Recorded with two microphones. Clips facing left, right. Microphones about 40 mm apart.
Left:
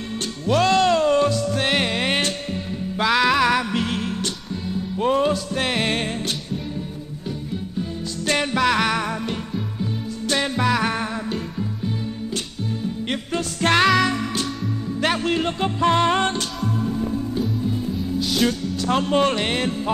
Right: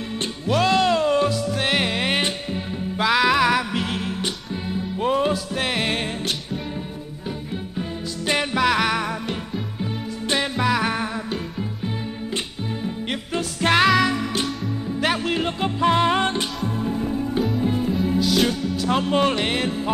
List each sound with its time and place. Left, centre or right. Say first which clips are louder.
0.5 s music: left 1 dB; centre
4.2 s music: even; right
4.9 s music: left 2 dB; centre
8.4 s music: even; centre
9.8 s music: left 1 dB; right
10.6 s music: even; centre
13.6 s music: even; centre
17.6 s music: right 3 dB; right
18.4 s music: even; centre